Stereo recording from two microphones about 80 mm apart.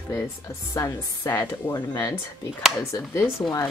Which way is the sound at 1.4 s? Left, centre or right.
Left.